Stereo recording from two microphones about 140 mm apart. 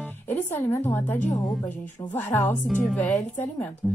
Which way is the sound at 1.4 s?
Centre (ahead or behind).